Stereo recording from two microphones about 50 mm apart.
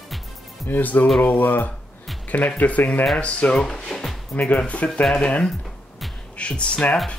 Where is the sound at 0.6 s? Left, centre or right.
Left.